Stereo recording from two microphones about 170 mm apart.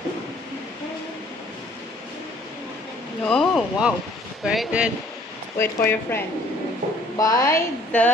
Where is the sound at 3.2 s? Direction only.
5° left (ahead or behind).